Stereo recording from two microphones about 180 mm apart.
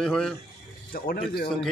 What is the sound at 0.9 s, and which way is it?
Speech, 55° left (ahead or behind).